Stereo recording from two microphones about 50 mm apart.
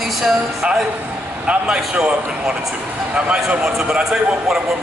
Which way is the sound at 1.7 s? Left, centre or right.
Centre.